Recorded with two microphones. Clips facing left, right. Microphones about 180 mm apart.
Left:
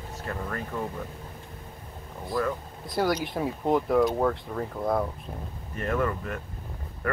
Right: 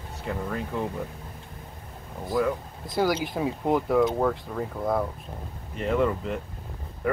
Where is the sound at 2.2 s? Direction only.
Centre (ahead or behind).